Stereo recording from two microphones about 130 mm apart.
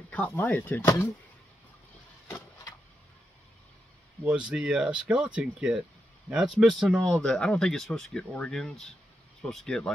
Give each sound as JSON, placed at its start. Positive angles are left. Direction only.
{"t": 0.1, "sound": "speech", "side_deg": 10}
{"t": 2.2, "sound": "vehicle", "side_deg": 20}
{"t": 4.2, "sound": "speech", "side_deg": -10}